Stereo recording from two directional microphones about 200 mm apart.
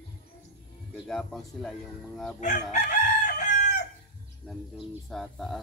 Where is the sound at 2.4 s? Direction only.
35° left (ahead or behind).